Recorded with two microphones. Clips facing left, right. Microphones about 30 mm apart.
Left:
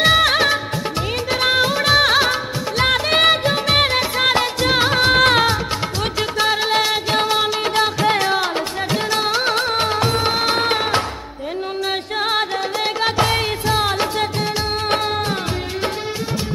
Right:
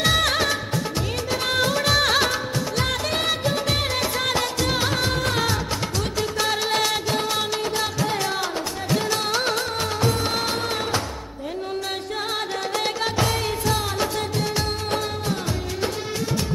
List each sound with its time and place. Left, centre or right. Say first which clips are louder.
0.0 s music of bollywood: left 6 dB; left
1.3 s music of bollywood: left 7 dB; left
1.6 s music of bollywood: left 3 dB; left
3.1 s music of bollywood: left 8 dB; left
5.0 s music: left 10 dB; left
6.5 s music: left 4 dB; left
7.7 s music: left 7 dB; left
8.9 s music: left 3 dB; left
9.6 s music of bollywood: left 6 dB; left
10.5 s music: left 7 dB; left
13.0 s music: left 8 dB; left